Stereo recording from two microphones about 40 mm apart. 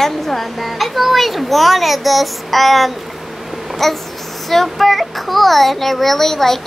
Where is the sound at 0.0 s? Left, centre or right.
Centre.